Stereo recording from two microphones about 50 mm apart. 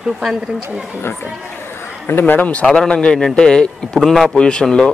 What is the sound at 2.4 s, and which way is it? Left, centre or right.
A man's voice, left.